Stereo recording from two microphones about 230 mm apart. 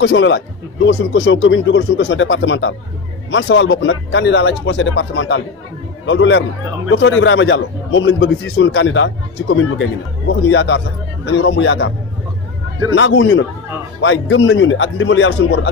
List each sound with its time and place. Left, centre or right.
0.0 s a man's voice: left
12.9 s a man's voice: left